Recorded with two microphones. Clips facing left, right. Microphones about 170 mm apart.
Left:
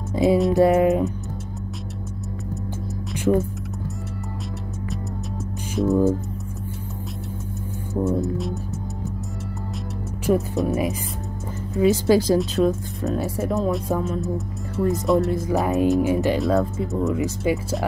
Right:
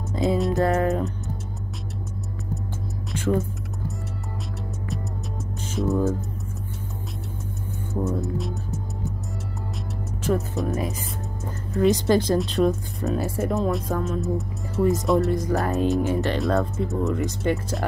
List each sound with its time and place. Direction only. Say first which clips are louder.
0.1 s music: left 5 dB; 10° left (ahead or behind)
3.3 s music: left 4 dB; 15° left (ahead or behind)
5.8 s speech: left 4 dB; centre (ahead or behind)
8.2 s speech: left 3 dB; centre (ahead or behind)
10.3 s music: left 4 dB; 15° left (ahead or behind)
11.7 s speech: left 2 dB; 5° left (ahead or behind)